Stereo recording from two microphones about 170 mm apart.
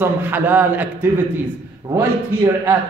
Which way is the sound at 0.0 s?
10° right (ahead or behind).